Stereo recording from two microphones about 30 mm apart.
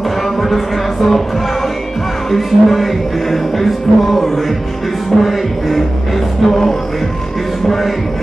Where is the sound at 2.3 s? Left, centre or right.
Centre.